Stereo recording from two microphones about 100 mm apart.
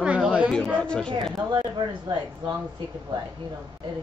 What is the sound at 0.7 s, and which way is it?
Speech, 10° left (ahead or behind).